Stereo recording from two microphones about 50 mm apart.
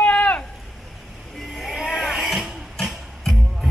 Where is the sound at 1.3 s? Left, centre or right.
Centre.